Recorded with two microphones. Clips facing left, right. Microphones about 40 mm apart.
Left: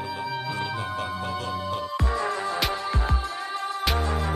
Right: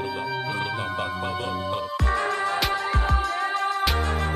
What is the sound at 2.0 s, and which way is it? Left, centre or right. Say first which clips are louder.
Music: right 4 dB; right.